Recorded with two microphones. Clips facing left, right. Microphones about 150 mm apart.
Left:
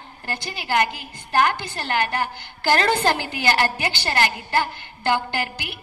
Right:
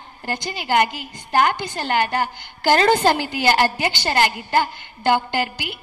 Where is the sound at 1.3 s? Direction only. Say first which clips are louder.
Right 2 dB; 15° right (ahead or behind).